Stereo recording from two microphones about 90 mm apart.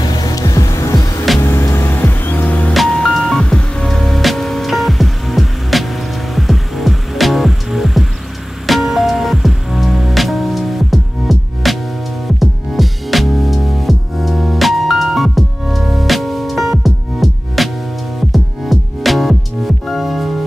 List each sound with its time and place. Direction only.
0.0 s music: 50° left (ahead or behind)
1.4 s music: 30° left (ahead or behind)
2.7 s music: 5° left (ahead or behind)